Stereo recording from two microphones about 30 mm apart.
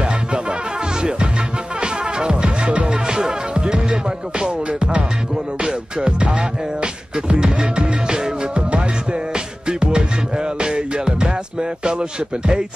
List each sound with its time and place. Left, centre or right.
0.0 s music: right
1.8 s music: right
2.3 s music: right
3.1 s music: right
7.2 s music: right
8.5 s music: right
9.3 s music: right